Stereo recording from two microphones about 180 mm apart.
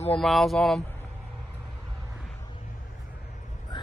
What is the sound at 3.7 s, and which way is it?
Vehicle, 25° left (ahead or behind).